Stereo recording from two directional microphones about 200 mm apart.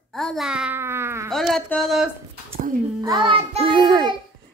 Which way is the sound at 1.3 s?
Centre (ahead or behind).